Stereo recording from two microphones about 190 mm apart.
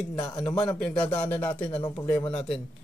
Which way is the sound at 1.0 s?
10° left (ahead or behind).